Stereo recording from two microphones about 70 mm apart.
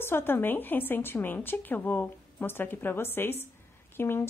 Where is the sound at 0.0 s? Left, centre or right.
Left.